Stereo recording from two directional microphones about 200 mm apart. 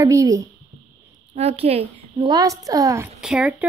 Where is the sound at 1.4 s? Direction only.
30° right (ahead or behind); by 3.1 s 15° right (ahead or behind).